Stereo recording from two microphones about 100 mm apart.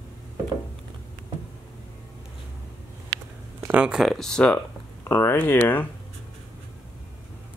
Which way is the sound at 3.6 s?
10° right (ahead or behind).